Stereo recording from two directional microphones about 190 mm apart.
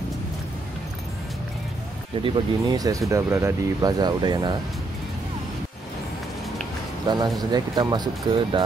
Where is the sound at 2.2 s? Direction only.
20° right (ahead or behind).